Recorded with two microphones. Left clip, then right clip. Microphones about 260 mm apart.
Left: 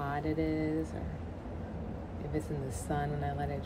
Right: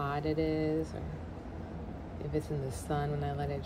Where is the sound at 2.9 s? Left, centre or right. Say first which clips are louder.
Even; centre.